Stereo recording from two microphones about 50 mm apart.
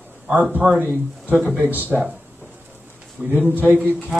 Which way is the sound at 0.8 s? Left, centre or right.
Right.